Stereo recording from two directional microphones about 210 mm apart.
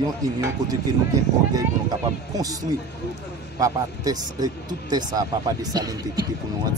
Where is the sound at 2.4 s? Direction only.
15° right (ahead or behind).